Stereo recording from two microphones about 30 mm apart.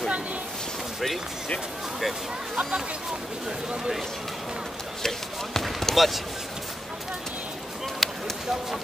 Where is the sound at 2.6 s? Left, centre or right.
Right.